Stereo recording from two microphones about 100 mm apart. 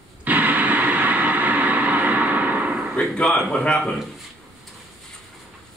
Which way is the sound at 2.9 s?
10° left (ahead or behind).